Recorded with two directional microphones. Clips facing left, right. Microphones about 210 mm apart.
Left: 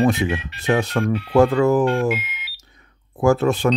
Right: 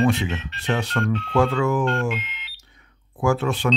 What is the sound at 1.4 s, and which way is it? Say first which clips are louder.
Speech: left 6 dB; 40° left (ahead or behind).